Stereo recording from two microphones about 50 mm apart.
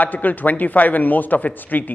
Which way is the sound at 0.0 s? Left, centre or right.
Left.